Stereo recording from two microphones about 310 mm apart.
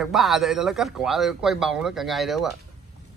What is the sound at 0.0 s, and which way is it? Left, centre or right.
Speech, centre.